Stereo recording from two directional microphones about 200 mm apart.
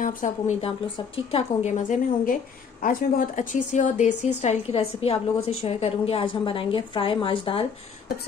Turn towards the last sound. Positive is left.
turn(degrees=25)  # may be behind; listen again after turning